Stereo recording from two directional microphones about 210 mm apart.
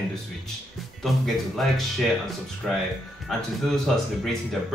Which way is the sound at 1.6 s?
Centre (ahead or behind).